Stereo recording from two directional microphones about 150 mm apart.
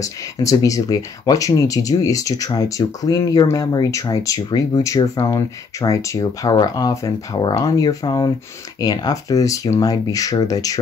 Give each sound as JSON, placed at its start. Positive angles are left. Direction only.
{"t": 0.0, "sound": "speech", "side_deg": 20}